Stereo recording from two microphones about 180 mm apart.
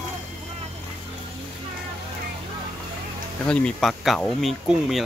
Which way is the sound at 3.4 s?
5° left (ahead or behind).